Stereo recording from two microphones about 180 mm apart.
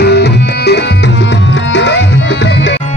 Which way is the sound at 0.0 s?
70° left (ahead or behind).